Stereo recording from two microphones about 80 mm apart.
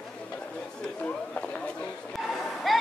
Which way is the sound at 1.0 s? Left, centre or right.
Centre.